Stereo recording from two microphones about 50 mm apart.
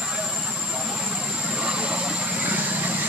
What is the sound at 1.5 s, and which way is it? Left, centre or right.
Vehicle, right.